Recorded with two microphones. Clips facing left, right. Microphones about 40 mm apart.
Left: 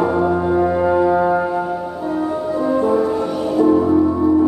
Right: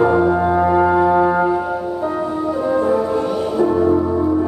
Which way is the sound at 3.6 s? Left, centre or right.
Centre.